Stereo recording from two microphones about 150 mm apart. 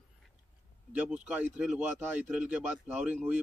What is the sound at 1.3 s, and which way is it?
A man's voice, 10° right (ahead or behind).